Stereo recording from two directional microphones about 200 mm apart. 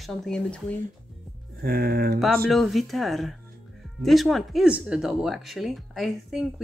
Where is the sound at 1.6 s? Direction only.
50° right (ahead or behind).